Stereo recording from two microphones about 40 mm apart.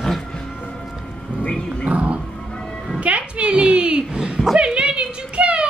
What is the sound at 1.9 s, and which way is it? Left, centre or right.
Dog, right.